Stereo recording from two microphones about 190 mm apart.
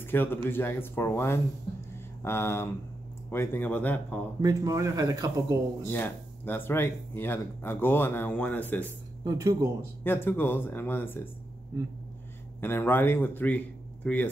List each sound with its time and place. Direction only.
0.0 s speech: 10° left (ahead or behind)
4.4 s speech: 20° right (ahead or behind)
5.9 s speech: 10° left (ahead or behind)
9.2 s speech: 15° right (ahead or behind)
10.0 s speech: 10° left (ahead or behind)
11.7 s speech: 15° right (ahead or behind)
12.5 s a man's voice: 10° left (ahead or behind)